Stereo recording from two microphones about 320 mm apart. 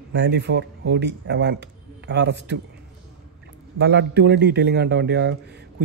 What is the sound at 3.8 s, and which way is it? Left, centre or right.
A man's voice, right.